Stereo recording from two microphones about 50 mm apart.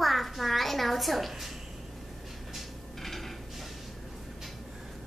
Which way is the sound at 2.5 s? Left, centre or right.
Centre.